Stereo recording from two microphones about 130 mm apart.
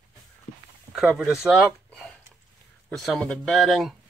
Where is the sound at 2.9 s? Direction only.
Centre (ahead or behind).